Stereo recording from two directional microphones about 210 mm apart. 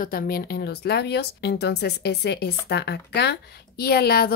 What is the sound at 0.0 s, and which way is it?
A woman's voice, 45° left (ahead or behind).